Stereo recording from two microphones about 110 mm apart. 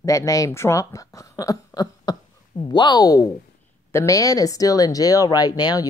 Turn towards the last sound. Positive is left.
turn(degrees=35)  # may be behind; listen again after turning